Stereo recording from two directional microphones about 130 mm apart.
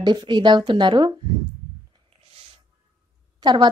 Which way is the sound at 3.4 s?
35° right (ahead or behind).